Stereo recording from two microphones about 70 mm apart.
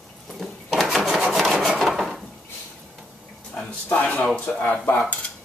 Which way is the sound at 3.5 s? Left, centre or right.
Centre.